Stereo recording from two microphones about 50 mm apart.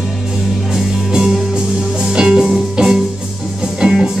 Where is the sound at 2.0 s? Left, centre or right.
Centre.